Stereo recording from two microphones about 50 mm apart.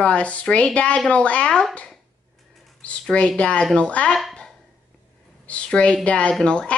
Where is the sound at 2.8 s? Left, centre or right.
Left.